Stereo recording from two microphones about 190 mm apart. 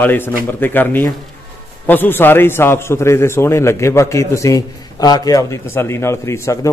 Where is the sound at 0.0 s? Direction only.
10° left (ahead or behind).